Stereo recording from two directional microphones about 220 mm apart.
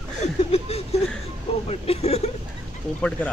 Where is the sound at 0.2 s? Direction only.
30° left (ahead or behind).